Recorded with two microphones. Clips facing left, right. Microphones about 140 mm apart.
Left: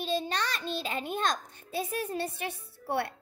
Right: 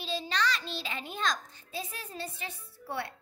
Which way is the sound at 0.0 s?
50° left (ahead or behind).